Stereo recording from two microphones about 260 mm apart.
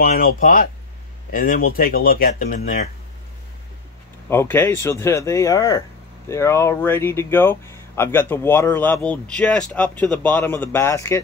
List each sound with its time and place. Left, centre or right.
0.0 s speech: left
4.3 s speech: centre